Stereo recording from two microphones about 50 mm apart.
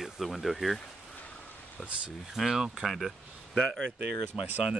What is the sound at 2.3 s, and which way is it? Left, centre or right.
Speech, centre.